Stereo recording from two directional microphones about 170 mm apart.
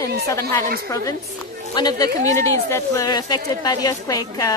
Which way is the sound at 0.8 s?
20° left (ahead or behind).